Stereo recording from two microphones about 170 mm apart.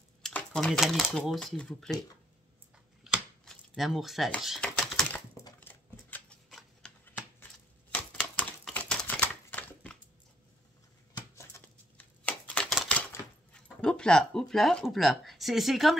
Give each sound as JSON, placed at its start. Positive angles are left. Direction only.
{"t": 0.2, "sound": "speech", "side_deg": 10}
{"t": 3.0, "sound": "a sound", "side_deg": -5}
{"t": 6.8, "sound": "typewriter", "side_deg": 5}
{"t": 11.3, "sound": "a sound", "side_deg": 15}
{"t": 12.7, "sound": "typewriter", "side_deg": 5}
{"t": 13.1, "sound": "speech", "side_deg": 5}